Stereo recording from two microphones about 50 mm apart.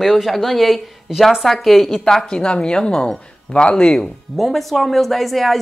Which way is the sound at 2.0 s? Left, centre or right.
Centre.